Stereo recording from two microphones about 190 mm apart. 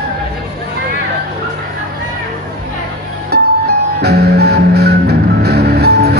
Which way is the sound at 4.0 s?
55° right (ahead or behind).